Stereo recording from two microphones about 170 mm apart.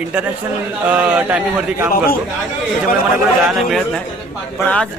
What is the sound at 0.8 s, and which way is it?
Speech, 10° right (ahead or behind).